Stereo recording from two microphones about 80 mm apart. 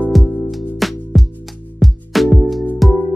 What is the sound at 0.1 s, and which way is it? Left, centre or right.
Music, centre.